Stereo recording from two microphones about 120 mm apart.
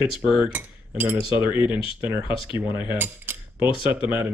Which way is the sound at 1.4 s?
15° right (ahead or behind).